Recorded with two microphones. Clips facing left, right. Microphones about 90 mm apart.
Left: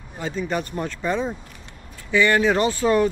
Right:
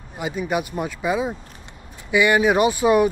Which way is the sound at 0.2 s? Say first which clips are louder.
Right 2 dB; 10° right (ahead or behind).